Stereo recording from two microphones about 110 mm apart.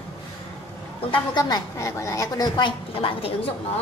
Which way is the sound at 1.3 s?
35° left (ahead or behind).